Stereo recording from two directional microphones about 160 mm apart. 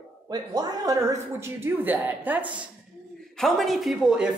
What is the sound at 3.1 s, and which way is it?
A man's voice, centre (ahead or behind).